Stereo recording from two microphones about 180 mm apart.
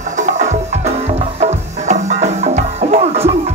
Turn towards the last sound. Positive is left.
turn(degrees=-35)  # may be behind; listen again after turning